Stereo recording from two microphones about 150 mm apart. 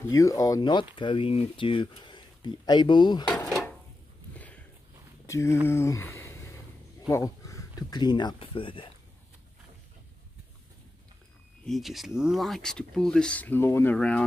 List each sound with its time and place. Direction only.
0.0 s speech: 20° left (ahead or behind)
3.3 s speech: 10° left (ahead or behind)
4.3 s a sound: 10° left (ahead or behind)
5.2 s speech: 20° left (ahead or behind); by 8.9 s 35° left (ahead or behind)
11.6 s speech: centre (ahead or behind)